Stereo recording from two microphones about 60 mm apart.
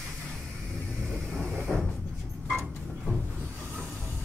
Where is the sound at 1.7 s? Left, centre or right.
Centre.